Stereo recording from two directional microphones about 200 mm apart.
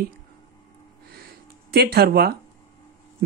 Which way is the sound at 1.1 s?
50° right (ahead or behind).